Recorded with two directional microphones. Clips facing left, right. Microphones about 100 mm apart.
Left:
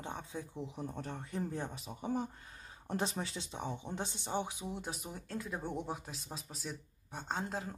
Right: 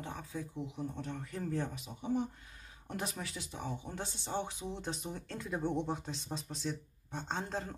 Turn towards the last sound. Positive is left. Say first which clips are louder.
# even
turn(degrees=5)  # may be behind; listen again after turning